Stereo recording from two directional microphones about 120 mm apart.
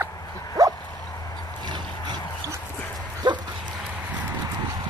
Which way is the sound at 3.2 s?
35° right (ahead or behind).